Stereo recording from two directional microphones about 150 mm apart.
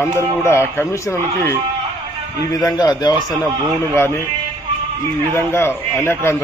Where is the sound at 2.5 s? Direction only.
25° left (ahead or behind).